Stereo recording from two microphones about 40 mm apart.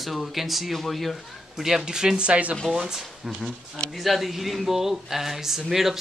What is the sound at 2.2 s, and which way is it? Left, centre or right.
Speech, right.